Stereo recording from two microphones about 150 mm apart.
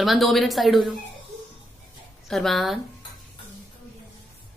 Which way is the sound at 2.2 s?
Centre (ahead or behind).